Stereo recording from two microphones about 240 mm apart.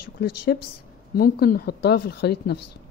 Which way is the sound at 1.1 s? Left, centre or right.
Left.